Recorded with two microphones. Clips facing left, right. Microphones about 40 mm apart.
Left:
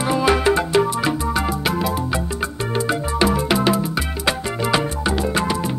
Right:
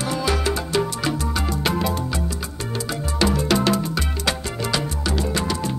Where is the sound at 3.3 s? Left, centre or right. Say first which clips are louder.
Left 2 dB; centre.